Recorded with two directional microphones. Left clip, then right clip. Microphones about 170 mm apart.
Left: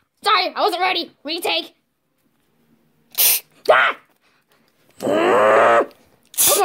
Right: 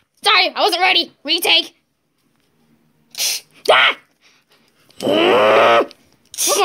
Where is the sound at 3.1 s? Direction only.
65° left (ahead or behind).